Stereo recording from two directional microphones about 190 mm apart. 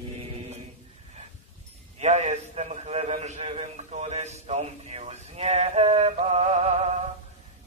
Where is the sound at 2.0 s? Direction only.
35° right (ahead or behind).